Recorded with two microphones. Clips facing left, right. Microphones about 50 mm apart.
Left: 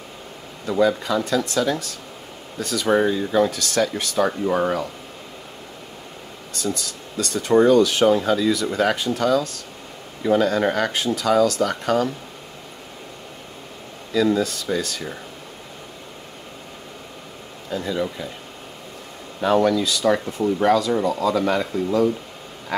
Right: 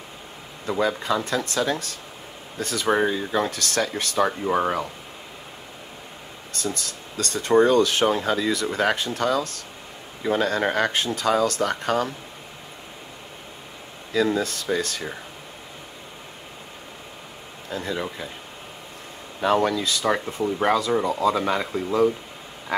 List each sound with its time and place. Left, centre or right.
0.7 s speech: right
4.5 s speech: right
6.5 s speech: right
14.1 s speech: right
17.7 s speech: right
19.4 s speech: right